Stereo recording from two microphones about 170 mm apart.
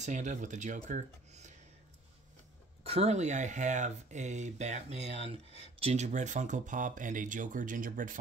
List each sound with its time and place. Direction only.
0.0 s speech: 45° right (ahead or behind)
2.8 s speech: 35° right (ahead or behind); by 8.2 s 55° right (ahead or behind)